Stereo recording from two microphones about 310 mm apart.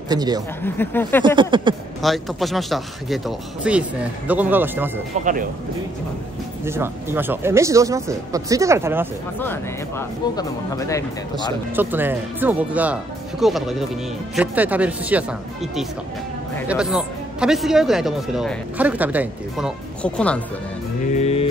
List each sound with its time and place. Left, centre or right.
0.1 s speech: centre
0.6 s speech: centre
1.2 s speech: centre
2.0 s a man's voice: centre
5.2 s speech: right
6.6 s speech: centre
9.4 s speech: centre
11.7 s a man's voice: centre
21.2 s music: centre